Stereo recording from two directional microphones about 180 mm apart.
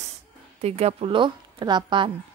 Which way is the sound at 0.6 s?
35° right (ahead or behind).